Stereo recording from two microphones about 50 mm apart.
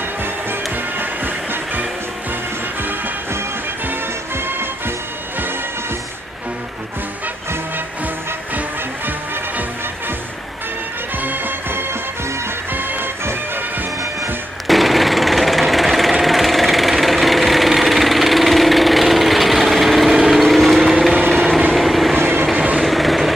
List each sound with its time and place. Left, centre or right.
0.2 s music: right
3.8 s music: right
8.5 s music: right
11.1 s music: right
14.7 s jackhammer: centre
21.2 s a sound: centre
21.7 s vehicle: centre